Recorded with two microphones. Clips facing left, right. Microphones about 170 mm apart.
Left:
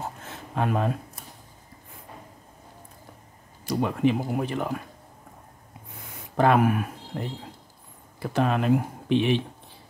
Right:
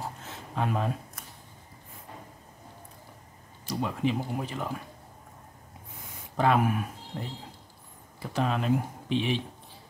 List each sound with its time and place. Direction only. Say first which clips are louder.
0.6 s speech: left 4 dB; 60° left (ahead or behind)
3.6 s speech: left 6 dB; 55° left (ahead or behind)
6.3 s speech: left 4 dB; 60° left (ahead or behind)